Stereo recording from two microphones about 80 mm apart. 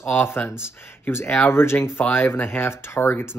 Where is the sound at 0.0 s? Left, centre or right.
Left.